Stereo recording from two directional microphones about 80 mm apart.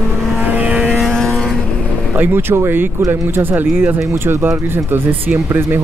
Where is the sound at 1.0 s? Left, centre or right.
Centre.